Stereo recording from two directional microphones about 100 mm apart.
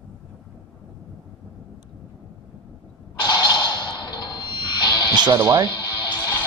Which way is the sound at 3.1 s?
45° left (ahead or behind).